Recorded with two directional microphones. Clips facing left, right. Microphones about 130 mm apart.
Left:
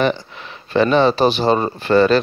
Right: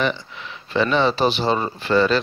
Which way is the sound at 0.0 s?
45° left (ahead or behind).